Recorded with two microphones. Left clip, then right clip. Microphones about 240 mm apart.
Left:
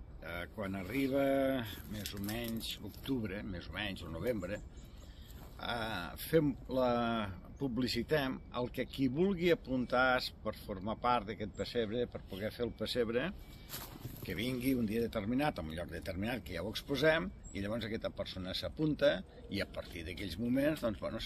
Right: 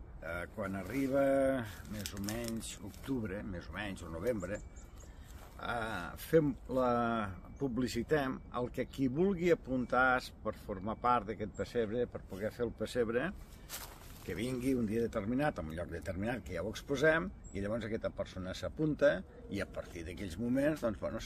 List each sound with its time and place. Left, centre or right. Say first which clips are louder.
0.2 s speech: right 2 dB; centre
5.6 s speech: right 1 dB; centre